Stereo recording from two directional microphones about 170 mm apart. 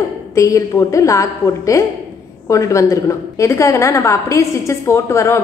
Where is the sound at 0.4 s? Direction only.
15° left (ahead or behind).